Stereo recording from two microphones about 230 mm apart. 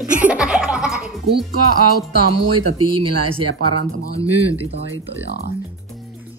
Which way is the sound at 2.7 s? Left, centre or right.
Right.